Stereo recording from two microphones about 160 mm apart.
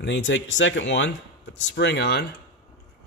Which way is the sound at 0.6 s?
90° left.